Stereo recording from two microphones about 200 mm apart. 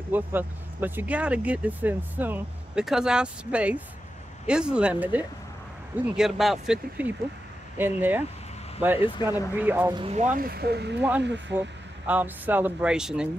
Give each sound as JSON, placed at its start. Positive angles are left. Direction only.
{"t": 0.1, "sound": "speech", "side_deg": -10}
{"t": 9.2, "sound": "speech", "side_deg": 20}
{"t": 9.6, "sound": "speech", "side_deg": -10}
{"t": 9.9, "sound": "speech", "side_deg": -30}
{"t": 11.0, "sound": "speech", "side_deg": -5}
{"t": 11.2, "sound": "speech", "side_deg": -60}
{"t": 12.1, "sound": "speech", "side_deg": -10}